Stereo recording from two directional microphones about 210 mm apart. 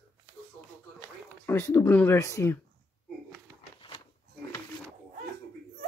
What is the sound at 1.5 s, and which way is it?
Speech, 10° left (ahead or behind).